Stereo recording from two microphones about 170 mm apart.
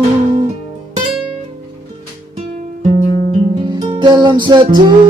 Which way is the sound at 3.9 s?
25° right (ahead or behind).